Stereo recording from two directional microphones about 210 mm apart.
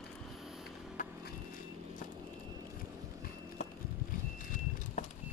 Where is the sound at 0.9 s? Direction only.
40° left (ahead or behind).